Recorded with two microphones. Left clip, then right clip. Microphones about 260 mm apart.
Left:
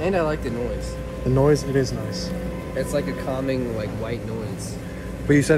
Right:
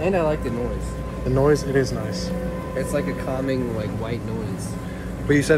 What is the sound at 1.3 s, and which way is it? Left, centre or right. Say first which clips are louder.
A man's voice: even; left.